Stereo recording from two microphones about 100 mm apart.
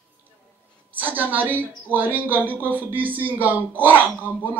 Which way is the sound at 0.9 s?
20° right (ahead or behind).